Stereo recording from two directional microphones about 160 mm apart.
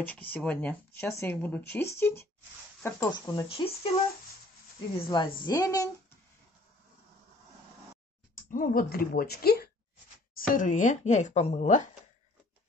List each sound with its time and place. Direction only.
0.0 s speech: 10° left (ahead or behind)
3.1 s speech: 25° left (ahead or behind)
4.9 s speech: 35° left (ahead or behind)
5.5 s speech: 20° left (ahead or behind)
8.5 s speech: 60° left (ahead or behind); by 9.7 s 75° left (ahead or behind)
10.5 s speech: 55° left (ahead or behind)